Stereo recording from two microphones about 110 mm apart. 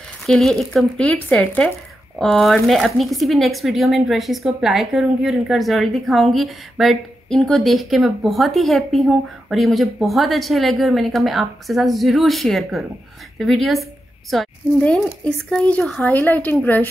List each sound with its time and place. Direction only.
0.3 s speech: centre (ahead or behind)
1.0 s speech: 10° left (ahead or behind)
15.2 s speech: 10° left (ahead or behind)